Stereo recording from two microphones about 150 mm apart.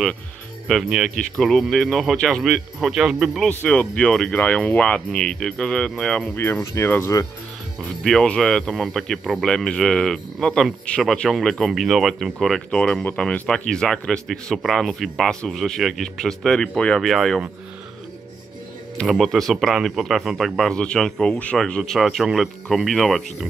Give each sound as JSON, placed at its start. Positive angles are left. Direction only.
{"t": 0.7, "sound": "speech", "side_deg": 0}
{"t": 6.3, "sound": "speech", "side_deg": 15}
{"t": 8.0, "sound": "speech", "side_deg": 5}
{"t": 18.9, "sound": "speech", "side_deg": 0}